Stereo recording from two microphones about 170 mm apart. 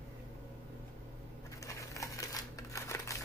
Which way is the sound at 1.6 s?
20° left (ahead or behind).